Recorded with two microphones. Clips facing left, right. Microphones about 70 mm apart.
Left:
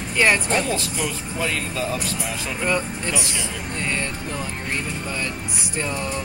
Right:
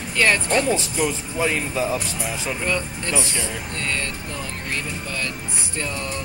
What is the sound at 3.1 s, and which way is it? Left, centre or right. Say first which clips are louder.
Speech: right 5 dB; right.